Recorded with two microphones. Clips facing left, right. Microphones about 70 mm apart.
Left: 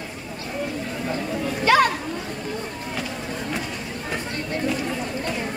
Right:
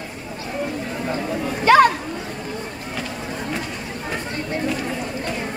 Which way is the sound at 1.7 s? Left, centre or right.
Right.